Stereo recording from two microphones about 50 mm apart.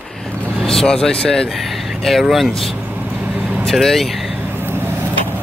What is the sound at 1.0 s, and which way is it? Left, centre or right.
Speech, centre.